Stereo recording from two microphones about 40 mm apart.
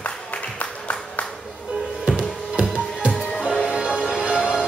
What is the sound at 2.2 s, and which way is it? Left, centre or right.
Music, right.